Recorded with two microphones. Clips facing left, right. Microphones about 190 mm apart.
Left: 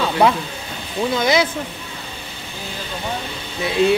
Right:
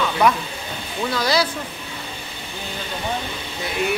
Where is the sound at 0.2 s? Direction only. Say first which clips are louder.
Left 2 dB; 30° left (ahead or behind).